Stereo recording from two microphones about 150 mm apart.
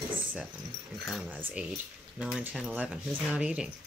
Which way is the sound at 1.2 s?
10° right (ahead or behind).